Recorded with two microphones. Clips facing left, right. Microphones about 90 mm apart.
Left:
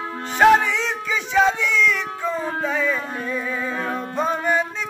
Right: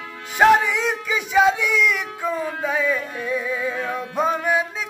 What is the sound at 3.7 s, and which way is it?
Music, 45° left (ahead or behind).